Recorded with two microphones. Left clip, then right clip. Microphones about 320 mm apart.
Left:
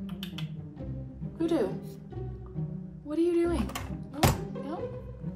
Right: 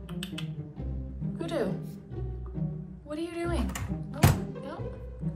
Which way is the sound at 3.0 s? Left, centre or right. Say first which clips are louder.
Left 7 dB; centre.